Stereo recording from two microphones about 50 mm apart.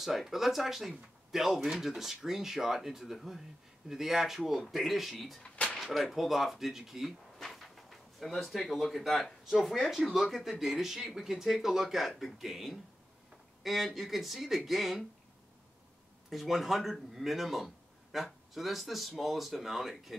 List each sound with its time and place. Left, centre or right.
0.0 s speech: centre
5.4 s a sound: left
5.8 s speech: centre
16.3 s speech: centre